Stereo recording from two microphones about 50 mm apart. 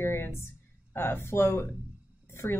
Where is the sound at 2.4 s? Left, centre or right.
Left.